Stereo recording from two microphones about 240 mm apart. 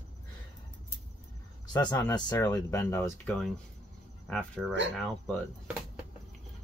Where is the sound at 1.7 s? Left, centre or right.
Centre.